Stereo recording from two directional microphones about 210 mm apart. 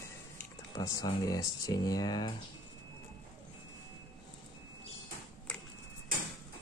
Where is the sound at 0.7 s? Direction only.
15° left (ahead or behind).